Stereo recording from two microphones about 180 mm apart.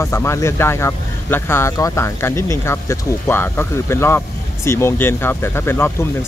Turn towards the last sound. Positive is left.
turn(degrees=15)  # may be behind; listen again after turning